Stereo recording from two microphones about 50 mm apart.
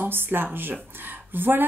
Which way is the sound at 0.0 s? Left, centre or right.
Right.